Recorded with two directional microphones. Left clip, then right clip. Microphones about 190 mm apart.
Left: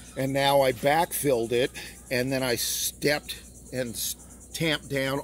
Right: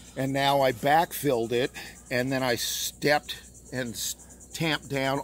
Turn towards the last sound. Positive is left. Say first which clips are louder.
# even
turn(degrees=-50)  # may be behind; listen again after turning